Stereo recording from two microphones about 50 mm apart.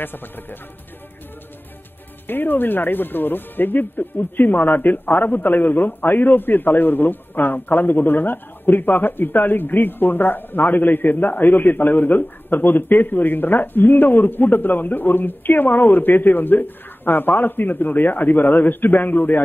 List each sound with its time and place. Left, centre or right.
0.0 s speech: left
2.2 s speech: left